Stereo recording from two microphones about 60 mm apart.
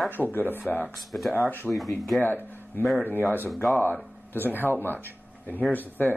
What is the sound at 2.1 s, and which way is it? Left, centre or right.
Speech, left.